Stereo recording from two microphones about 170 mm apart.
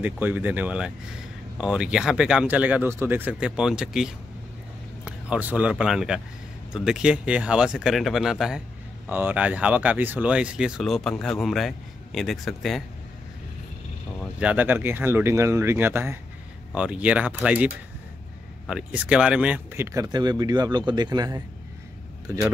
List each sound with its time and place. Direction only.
0.0 s speech: 10° right (ahead or behind)
14.4 s speech: 10° right (ahead or behind)